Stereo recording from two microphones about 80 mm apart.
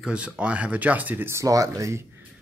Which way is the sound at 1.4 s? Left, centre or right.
Right.